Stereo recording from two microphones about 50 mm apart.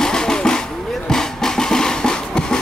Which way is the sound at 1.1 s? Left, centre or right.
Centre.